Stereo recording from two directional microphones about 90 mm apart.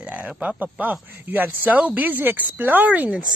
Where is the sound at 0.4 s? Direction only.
15° right (ahead or behind).